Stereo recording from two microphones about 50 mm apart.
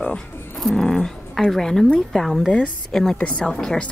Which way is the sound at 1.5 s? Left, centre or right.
Centre.